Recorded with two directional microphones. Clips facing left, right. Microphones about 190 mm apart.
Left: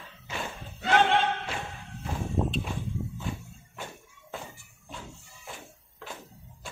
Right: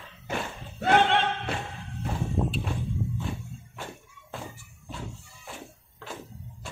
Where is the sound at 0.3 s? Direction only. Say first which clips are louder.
Right 4 dB; 55° right (ahead or behind).